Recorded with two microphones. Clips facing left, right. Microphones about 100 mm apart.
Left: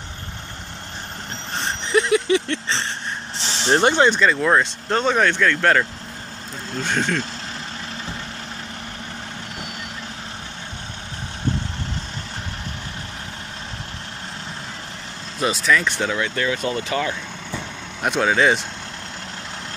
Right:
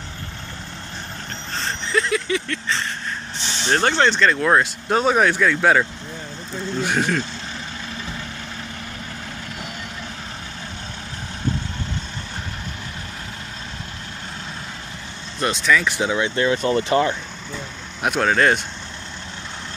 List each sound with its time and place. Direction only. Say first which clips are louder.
1.6 s a sound: left 3 dB; 20° left (ahead or behind)
3.4 s vehicle: left 2 dB; 35° left (ahead or behind)
3.8 s speech: left 1 dB; 10° left (ahead or behind); by 7.2 s 5° right (ahead or behind)
15.3 s speech: even; centre (ahead or behind)
16.1 s speech: right 3 dB; 20° right (ahead or behind)
16.4 s speech: right 4 dB; 35° right (ahead or behind)
18.0 s speech: even; centre (ahead or behind)